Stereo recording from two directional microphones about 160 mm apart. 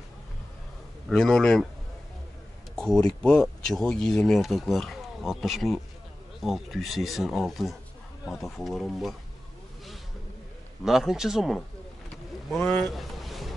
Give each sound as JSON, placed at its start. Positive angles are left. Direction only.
{"t": 1.0, "sound": "speech", "side_deg": 5}
{"t": 2.7, "sound": "speech", "side_deg": 5}
{"t": 10.9, "sound": "speech", "side_deg": -5}
{"t": 12.4, "sound": "a sound", "side_deg": 5}